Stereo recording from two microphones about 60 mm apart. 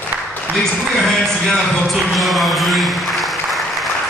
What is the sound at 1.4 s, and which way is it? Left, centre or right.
Speech, centre.